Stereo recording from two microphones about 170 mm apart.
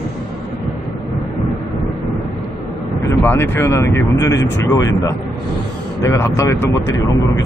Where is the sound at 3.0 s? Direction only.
15° left (ahead or behind).